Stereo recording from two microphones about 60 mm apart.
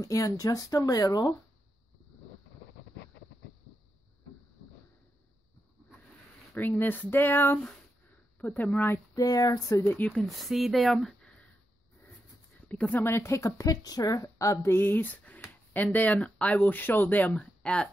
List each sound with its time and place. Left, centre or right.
0.0 s speech: left
6.5 s speech: left
9.1 s speech: left
9.8 s speech: left
10.2 s a woman's voice: centre
12.6 s speech: left
13.0 s a woman's voice: left
17.4 s speech: centre